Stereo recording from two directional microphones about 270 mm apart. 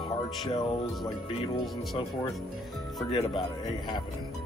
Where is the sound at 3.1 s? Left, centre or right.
Centre.